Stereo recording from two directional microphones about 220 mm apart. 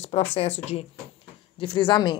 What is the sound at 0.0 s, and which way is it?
A woman's voice, 30° left (ahead or behind).